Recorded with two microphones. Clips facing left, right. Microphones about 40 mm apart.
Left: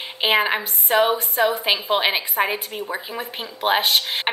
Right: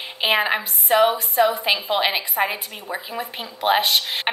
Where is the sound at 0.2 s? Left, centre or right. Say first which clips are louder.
Left 1 dB; centre.